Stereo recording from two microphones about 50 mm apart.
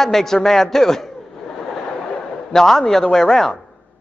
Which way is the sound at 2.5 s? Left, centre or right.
Centre.